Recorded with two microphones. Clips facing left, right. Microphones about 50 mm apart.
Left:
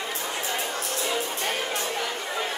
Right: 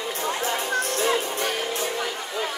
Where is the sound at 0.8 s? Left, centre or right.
Right.